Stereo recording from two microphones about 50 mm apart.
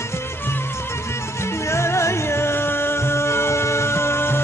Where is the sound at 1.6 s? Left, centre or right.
Left.